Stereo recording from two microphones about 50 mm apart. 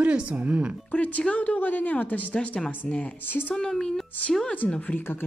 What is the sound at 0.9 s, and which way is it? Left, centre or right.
Speech, left.